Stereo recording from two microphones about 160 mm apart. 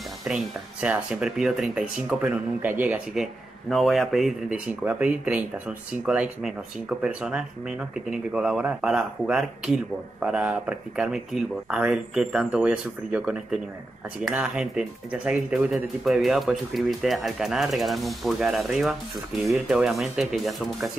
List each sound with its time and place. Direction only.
0.3 s a man's voice: 5° right (ahead or behind)